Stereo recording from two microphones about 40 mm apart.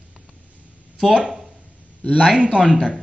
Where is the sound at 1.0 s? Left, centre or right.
Centre.